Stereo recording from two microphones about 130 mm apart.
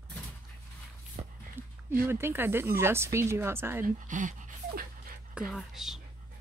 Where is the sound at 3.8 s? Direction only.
90° right.